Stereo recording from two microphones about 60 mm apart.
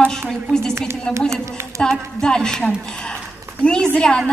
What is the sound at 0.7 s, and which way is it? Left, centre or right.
Speech, right.